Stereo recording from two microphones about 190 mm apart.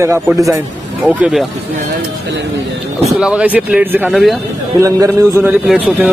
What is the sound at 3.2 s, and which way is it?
Speech, 5° right (ahead or behind).